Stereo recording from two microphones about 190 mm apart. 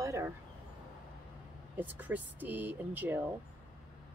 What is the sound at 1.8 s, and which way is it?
Speech, 10° right (ahead or behind).